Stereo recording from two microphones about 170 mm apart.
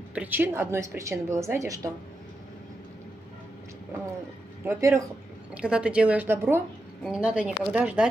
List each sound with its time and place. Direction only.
0.1 s a woman's voice: 10° right (ahead or behind)
4.6 s a woman's voice: 15° right (ahead or behind)
5.5 s a woman's voice: 5° right (ahead or behind)